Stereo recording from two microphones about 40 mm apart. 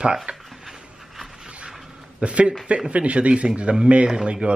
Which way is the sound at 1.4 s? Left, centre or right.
Right.